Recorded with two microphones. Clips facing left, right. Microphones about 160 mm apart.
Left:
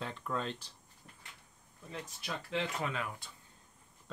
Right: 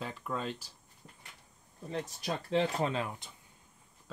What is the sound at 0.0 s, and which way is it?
Speech, 5° right (ahead or behind).